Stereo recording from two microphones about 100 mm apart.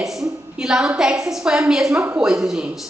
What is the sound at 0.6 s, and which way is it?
A man's voice, 5° right (ahead or behind).